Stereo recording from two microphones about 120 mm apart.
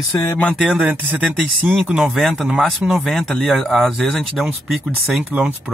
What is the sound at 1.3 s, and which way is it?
Speech, centre (ahead or behind).